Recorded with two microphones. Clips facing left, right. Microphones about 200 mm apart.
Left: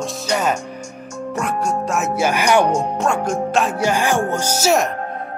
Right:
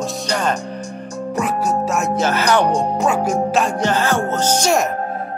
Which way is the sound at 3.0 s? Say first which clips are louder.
Right 2 dB; 5° right (ahead or behind).